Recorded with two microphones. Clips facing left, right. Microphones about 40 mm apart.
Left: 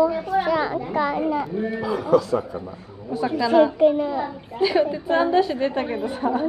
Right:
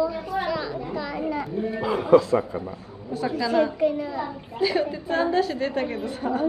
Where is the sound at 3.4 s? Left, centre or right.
Centre.